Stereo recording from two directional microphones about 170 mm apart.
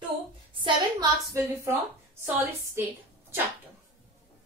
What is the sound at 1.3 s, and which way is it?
Speech, 15° right (ahead or behind).